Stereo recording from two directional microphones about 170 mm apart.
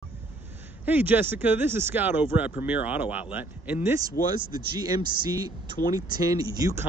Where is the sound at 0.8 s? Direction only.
10° right (ahead or behind).